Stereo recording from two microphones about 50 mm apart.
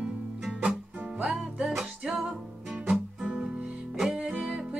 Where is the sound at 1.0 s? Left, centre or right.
Right.